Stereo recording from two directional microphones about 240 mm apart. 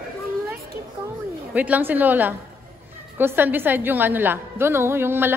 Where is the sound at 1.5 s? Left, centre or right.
Centre.